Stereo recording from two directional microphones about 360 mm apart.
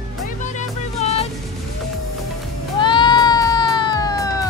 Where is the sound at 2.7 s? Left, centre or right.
Centre.